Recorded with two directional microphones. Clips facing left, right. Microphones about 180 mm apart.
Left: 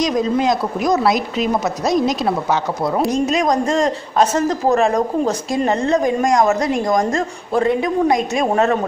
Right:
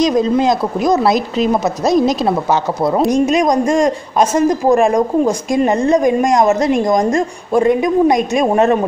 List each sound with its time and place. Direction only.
0.0 s a woman's voice: 30° right (ahead or behind)
3.1 s a man's voice: 15° right (ahead or behind)